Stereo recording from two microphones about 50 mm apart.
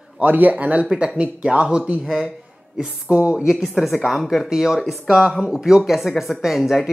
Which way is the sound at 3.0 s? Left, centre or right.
Right.